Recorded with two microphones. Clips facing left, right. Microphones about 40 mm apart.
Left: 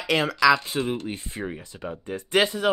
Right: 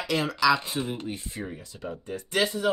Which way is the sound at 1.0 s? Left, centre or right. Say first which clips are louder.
Left 3 dB; left.